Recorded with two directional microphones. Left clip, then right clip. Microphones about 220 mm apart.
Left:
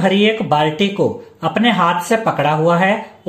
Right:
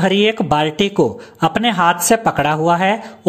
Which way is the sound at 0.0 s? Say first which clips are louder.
Even; 50° right (ahead or behind).